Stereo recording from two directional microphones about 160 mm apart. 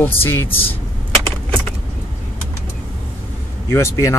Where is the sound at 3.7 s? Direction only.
20° left (ahead or behind).